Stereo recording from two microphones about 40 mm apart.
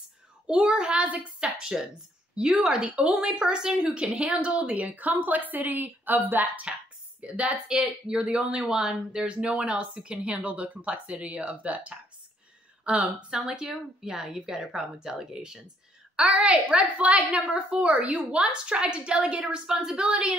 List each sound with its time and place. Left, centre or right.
0.5 s a woman's voice: right
7.2 s a woman's voice: right
8.6 s a woman's voice: centre
13.3 s speech: centre
16.2 s a woman's voice: right